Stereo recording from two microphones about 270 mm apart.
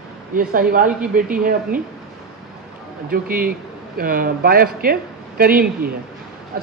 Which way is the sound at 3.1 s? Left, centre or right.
Right.